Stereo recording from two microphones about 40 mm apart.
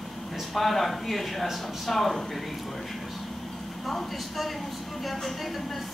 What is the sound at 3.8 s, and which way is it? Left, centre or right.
A woman's voice, centre.